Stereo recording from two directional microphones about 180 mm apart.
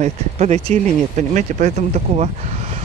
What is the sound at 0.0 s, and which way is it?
Speech, 40° right (ahead or behind).